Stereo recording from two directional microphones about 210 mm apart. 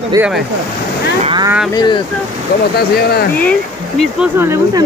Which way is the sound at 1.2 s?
20° right (ahead or behind).